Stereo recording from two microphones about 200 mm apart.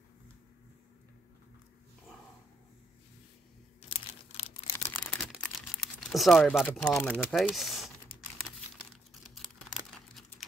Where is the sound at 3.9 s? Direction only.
30° left (ahead or behind).